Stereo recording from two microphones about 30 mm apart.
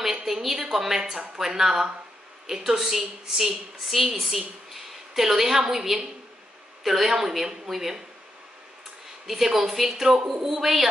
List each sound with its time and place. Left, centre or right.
0.3 s a woman's voice: centre
9.3 s a woman's voice: centre